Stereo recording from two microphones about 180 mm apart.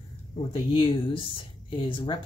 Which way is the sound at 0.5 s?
30° left (ahead or behind).